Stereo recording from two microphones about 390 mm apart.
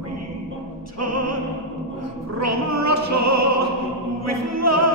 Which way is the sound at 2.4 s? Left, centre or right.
Right.